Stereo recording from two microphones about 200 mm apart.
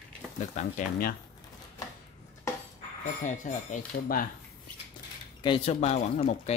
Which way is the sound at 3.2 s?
40° left (ahead or behind).